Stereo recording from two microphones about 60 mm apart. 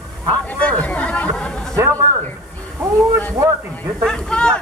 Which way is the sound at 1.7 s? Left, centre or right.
Right.